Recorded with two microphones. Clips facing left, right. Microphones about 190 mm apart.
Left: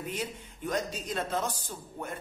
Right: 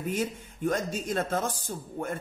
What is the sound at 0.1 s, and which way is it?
Speech, 45° right (ahead or behind).